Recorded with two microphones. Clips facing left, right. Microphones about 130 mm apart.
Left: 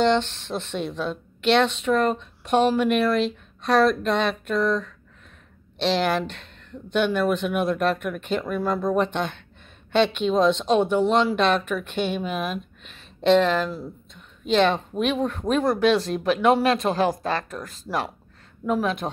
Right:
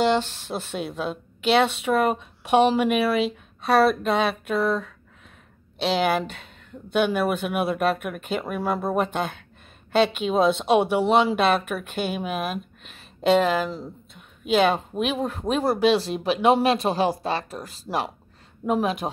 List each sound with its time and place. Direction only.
0.0 s a woman's voice: 10° right (ahead or behind)